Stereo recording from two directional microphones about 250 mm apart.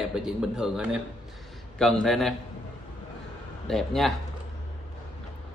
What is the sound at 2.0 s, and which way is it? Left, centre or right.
Speech, centre.